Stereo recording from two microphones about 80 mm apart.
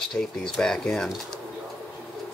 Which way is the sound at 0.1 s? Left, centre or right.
Centre.